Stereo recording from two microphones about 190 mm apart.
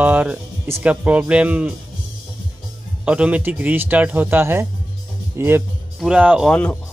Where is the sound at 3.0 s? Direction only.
5° right (ahead or behind).